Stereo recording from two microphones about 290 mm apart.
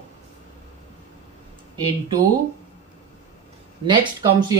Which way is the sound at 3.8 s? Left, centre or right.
Centre.